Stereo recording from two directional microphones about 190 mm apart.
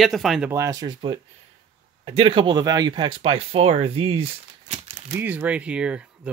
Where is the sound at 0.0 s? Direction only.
Centre (ahead or behind).